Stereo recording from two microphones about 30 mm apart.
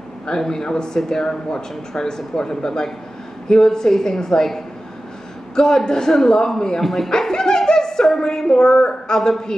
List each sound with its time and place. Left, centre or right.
0.3 s speech: centre
5.9 s speech: left
6.8 s speech: centre
7.1 s speech: centre